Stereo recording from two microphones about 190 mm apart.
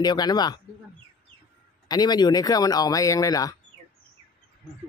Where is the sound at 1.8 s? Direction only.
20° left (ahead or behind).